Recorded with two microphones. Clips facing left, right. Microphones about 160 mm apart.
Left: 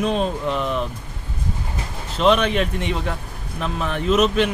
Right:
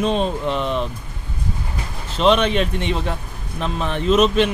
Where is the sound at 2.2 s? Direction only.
25° right (ahead or behind).